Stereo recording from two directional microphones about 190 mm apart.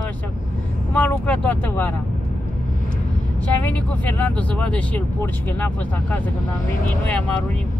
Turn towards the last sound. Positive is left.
turn(degrees=5)  # may be behind; listen again after turning